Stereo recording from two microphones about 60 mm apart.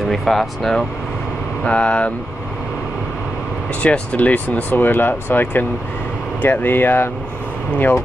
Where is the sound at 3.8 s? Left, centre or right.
Left.